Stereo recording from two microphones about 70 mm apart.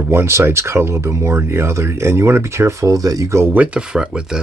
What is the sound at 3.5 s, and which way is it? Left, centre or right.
Speech, centre.